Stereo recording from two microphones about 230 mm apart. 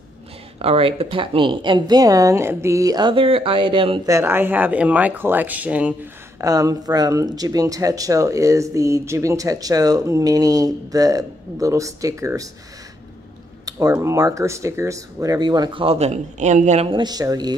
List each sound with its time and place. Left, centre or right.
0.6 s speech: right
13.7 s speech: centre